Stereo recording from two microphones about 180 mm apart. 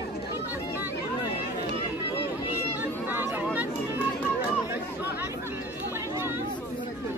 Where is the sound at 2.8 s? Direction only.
10° right (ahead or behind).